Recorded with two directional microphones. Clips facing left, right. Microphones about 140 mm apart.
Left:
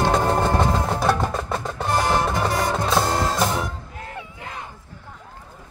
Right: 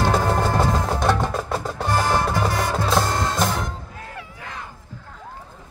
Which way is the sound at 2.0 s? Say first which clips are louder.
Even; 20° left (ahead or behind).